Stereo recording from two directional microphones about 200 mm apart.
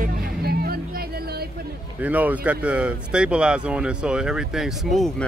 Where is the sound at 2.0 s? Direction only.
5° right (ahead or behind).